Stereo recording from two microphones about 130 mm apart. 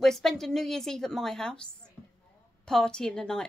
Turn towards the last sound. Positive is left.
turn(degrees=5)  # may be behind; listen again after turning